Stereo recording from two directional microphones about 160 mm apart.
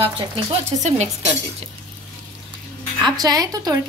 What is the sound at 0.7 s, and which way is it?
Speech, 45° right (ahead or behind).